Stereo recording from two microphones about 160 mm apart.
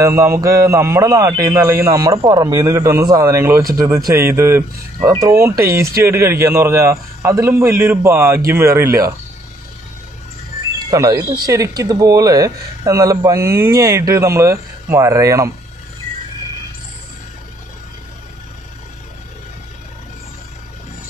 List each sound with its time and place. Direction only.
0.0 s a man's voice: 15° right (ahead or behind)
10.9 s speech: 25° right (ahead or behind)